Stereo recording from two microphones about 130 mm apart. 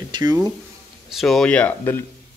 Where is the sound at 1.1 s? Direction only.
Centre (ahead or behind).